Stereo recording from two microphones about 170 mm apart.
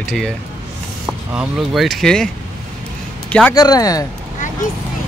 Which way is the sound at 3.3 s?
10° left (ahead or behind).